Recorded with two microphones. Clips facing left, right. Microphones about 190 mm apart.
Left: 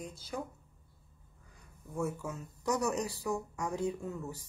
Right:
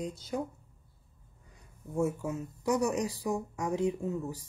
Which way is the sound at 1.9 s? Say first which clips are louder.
Right 5 dB; 20° right (ahead or behind).